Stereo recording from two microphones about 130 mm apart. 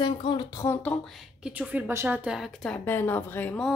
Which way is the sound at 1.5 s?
10° right (ahead or behind).